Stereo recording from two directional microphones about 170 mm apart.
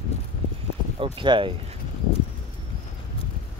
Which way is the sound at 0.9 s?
30° right (ahead or behind).